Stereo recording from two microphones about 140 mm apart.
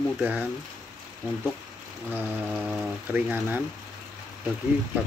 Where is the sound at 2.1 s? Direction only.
15° right (ahead or behind).